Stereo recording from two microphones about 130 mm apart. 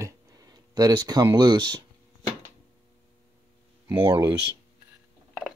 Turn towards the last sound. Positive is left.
turn(degrees=-20)  # may be behind; listen again after turning